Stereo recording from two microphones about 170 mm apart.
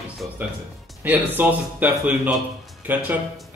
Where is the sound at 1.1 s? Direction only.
10° right (ahead or behind).